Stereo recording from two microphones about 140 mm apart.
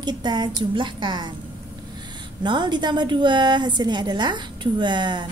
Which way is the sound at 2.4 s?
30° right (ahead or behind).